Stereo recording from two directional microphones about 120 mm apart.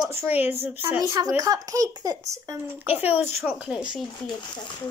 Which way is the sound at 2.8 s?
15° right (ahead or behind).